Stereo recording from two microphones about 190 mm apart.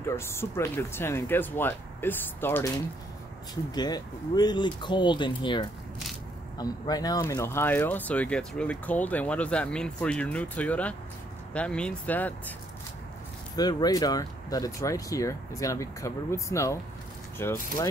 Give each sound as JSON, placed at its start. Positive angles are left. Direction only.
{"t": 0.1, "sound": "speech", "side_deg": 15}
{"t": 3.7, "sound": "speech", "side_deg": 20}
{"t": 13.6, "sound": "speech", "side_deg": 20}